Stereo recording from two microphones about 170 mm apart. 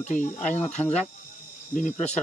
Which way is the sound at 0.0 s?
45° left (ahead or behind).